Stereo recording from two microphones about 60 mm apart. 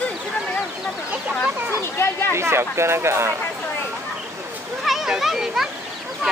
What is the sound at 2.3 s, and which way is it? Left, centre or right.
Speech, right.